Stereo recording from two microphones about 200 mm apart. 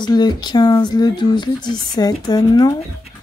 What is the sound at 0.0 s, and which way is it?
Speech, 20° left (ahead or behind).